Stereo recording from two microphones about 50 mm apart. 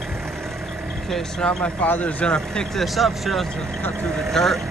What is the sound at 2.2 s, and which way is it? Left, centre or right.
Speech, centre.